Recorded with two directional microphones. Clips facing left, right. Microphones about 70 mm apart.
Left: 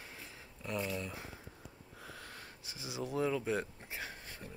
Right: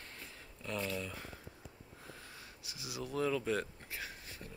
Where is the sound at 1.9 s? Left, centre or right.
Left.